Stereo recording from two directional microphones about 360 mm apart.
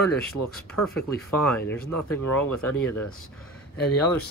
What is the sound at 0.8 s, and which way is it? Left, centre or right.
Speech, centre.